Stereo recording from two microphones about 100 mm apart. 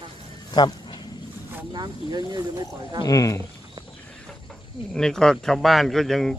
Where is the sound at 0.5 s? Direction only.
45° left (ahead or behind).